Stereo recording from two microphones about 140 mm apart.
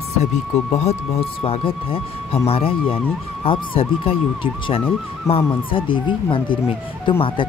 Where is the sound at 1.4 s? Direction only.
40° left (ahead or behind).